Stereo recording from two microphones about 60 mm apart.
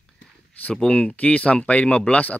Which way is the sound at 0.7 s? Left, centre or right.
Centre.